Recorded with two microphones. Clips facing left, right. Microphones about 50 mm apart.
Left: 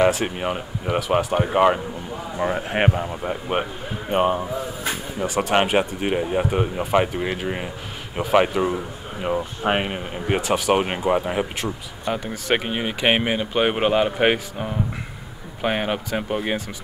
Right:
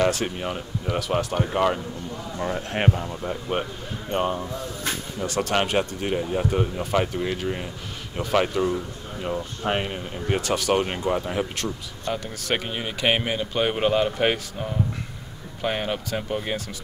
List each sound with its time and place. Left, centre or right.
0.1 s speech: centre
4.5 s a sound: centre
5.6 s speech: left